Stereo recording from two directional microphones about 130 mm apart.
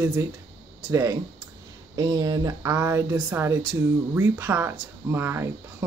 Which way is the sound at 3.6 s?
30° right (ahead or behind).